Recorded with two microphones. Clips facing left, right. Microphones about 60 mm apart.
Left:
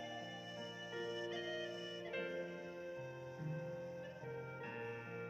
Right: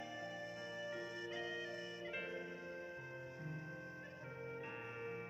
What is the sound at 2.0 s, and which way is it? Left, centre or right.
Music, centre.